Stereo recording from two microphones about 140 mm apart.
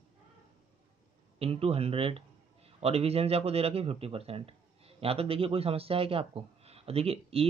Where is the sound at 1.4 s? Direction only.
45° right (ahead or behind).